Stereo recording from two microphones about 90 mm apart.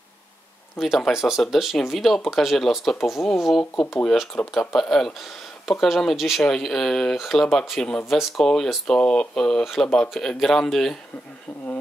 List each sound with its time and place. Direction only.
0.7 s speech: centre (ahead or behind)
3.7 s speech: 25° left (ahead or behind)
4.7 s speech: 5° left (ahead or behind)